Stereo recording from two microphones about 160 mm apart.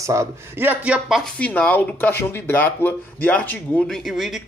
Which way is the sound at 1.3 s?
10° left (ahead or behind).